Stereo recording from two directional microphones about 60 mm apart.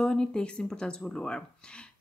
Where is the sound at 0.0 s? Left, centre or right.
Centre.